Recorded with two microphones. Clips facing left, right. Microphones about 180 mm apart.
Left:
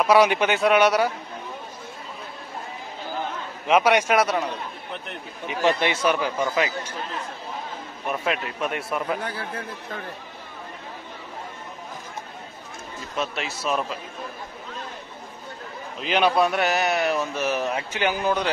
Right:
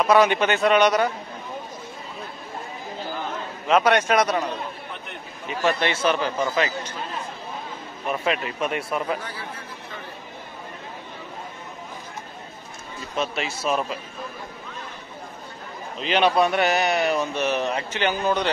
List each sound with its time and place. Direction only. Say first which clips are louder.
0.0 s a man's voice: even; 10° left (ahead or behind)
3.6 s a man's voice: even; 10° left (ahead or behind)
5.5 s a man's voice: left 1 dB; 15° left (ahead or behind)
8.1 s speech: right 2 dB; centre (ahead or behind)
9.2 s a man's voice: left 4 dB; 55° left (ahead or behind)
13.2 s speech: right 2 dB; centre (ahead or behind)
16.0 s speech: right 1 dB; 5° left (ahead or behind)